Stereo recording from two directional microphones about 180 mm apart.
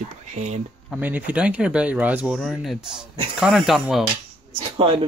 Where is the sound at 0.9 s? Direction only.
10° right (ahead or behind).